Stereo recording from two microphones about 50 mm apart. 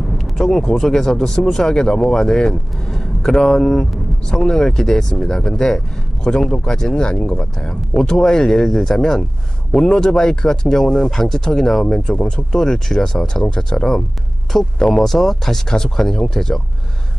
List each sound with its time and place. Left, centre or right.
0.5 s speech: centre
12.1 s speech: left